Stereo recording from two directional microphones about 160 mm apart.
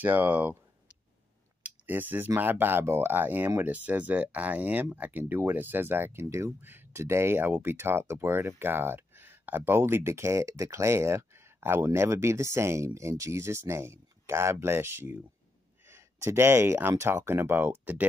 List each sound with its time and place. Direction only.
0.0 s speech: 10° right (ahead or behind)
1.6 s speech: 10° right (ahead or behind)